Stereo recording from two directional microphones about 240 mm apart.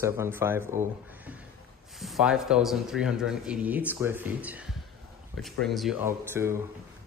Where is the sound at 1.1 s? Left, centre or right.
Centre.